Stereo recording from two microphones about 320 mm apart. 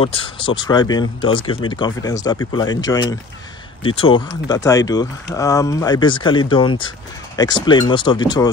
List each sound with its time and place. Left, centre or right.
0.0 s speech: centre